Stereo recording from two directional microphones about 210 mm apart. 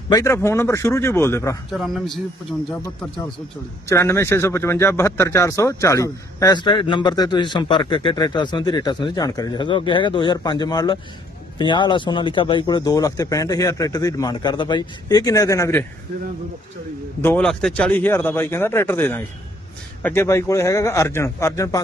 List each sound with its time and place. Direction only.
0.1 s a man's voice: 15° left (ahead or behind)
1.7 s a man's voice: centre (ahead or behind)
2.7 s a man's voice: 10° left (ahead or behind)
17.2 s a man's voice: 5° left (ahead or behind)